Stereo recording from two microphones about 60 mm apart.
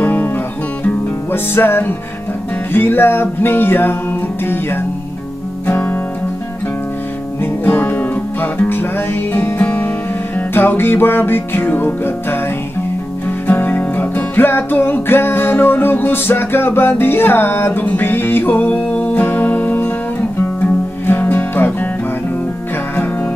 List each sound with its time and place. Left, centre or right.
0.0 s music: left
1.3 s music: left
5.7 s music: left
7.7 s music: left
8.6 s music: left
13.5 s music: left
21.1 s music: left